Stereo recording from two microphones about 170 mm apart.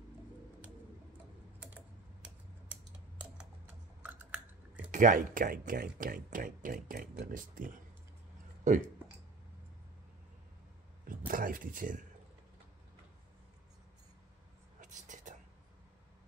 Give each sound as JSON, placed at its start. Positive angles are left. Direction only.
{"t": 3.2, "sound": "computer keyboard", "side_deg": -10}
{"t": 4.9, "sound": "speech", "side_deg": -50}
{"t": 11.1, "sound": "speech", "side_deg": -55}
{"t": 14.8, "sound": "whispering", "side_deg": -45}